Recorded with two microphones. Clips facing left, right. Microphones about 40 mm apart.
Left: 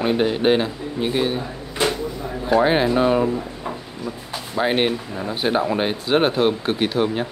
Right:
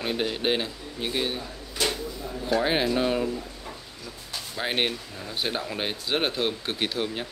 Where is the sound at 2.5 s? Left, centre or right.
Centre.